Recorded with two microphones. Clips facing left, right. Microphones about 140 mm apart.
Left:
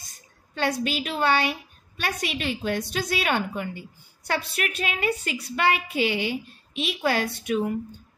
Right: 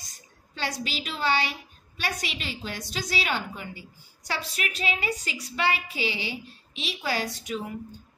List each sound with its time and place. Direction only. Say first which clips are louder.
0.6 s a woman's voice: left 7 dB; 55° left (ahead or behind)